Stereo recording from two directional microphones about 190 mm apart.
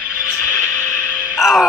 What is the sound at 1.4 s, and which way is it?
Speech, centre (ahead or behind).